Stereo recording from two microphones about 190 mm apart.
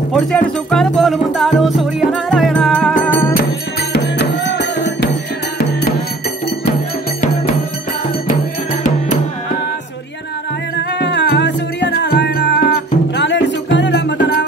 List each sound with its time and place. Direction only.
0.1 s speech: centre (ahead or behind)
2.1 s music: centre (ahead or behind)
3.9 s music: 65° left (ahead or behind)
11.0 s music: 65° left (ahead or behind)